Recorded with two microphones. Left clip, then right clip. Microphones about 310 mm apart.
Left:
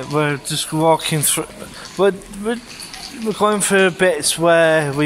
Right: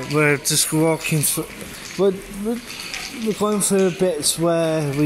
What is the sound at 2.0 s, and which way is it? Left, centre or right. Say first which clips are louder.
Speech: left 3 dB; left.